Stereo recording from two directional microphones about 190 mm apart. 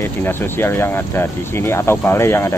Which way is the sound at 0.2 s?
10° left (ahead or behind).